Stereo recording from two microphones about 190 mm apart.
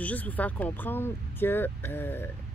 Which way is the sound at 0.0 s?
10° left (ahead or behind).